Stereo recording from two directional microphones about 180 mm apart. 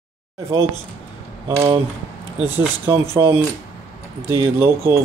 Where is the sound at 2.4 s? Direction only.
10° right (ahead or behind).